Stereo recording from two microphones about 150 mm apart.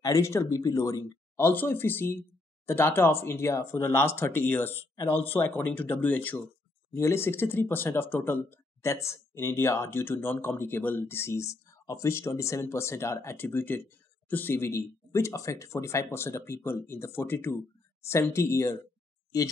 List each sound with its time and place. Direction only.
0.0 s speech: 20° left (ahead or behind)